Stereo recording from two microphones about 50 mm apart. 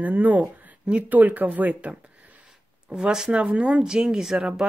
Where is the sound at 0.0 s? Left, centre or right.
Right.